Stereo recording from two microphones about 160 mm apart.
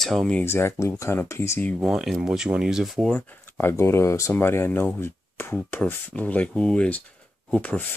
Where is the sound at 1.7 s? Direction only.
Centre (ahead or behind).